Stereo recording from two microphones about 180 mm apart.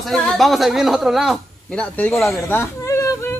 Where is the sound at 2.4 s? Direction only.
15° left (ahead or behind).